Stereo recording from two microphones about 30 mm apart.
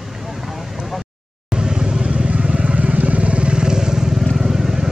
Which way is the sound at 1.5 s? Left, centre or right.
Right.